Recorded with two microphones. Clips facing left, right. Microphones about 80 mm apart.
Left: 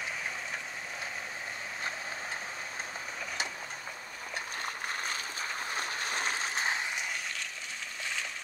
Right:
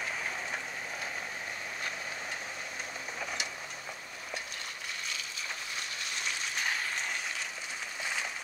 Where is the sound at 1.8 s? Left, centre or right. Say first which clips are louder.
Left 3 dB; left.